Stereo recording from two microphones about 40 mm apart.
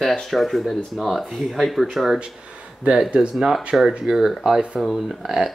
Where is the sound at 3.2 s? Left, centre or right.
Centre.